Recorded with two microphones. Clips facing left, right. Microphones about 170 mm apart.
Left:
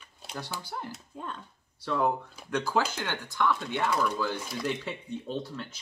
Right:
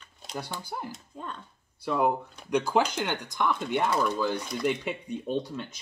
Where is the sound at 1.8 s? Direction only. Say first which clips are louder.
Right 2 dB; 15° right (ahead or behind).